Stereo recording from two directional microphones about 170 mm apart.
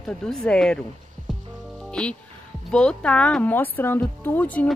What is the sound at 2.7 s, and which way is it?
Speech, 5° left (ahead or behind).